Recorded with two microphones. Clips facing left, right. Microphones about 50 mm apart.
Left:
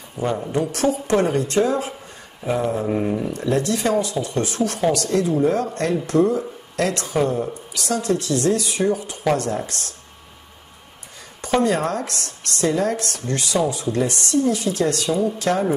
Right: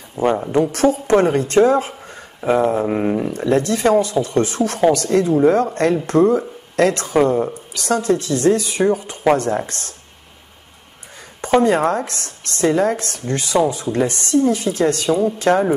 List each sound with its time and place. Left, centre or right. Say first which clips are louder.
0.2 s speech: right 6 dB; right
3.3 s speech: right 3 dB; right
11.4 s speech: right 5 dB; right